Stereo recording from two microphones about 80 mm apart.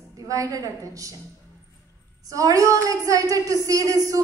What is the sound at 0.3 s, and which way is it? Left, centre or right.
Speech, right.